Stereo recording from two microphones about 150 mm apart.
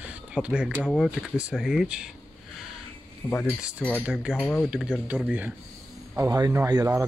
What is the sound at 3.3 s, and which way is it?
Speech, 10° left (ahead or behind).